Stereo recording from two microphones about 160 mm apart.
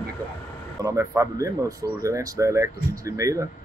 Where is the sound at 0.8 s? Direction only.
20° right (ahead or behind).